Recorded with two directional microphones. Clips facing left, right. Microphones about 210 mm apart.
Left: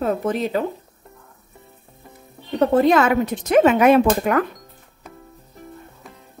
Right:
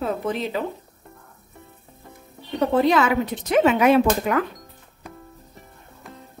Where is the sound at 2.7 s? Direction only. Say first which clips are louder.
Left 2 dB; 50° left (ahead or behind).